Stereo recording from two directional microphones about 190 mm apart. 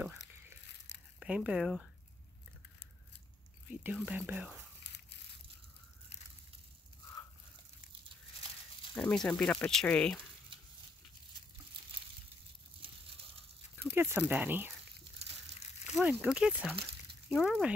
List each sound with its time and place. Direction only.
0.9 s crumpling: 35° left (ahead or behind)
1.2 s speech: 5° right (ahead or behind)
3.8 s speech: 5° right (ahead or behind)
8.9 s speech: 5° left (ahead or behind)
13.9 s speech: 10° right (ahead or behind)
15.8 s speech: 5° right (ahead or behind)